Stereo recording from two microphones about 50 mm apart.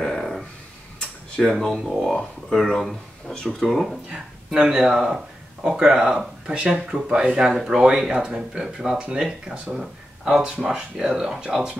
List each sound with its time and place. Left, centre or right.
0.0 s a sound: centre
1.3 s speech: centre
4.1 s speech: centre
10.4 s speech: right
10.7 s speech: centre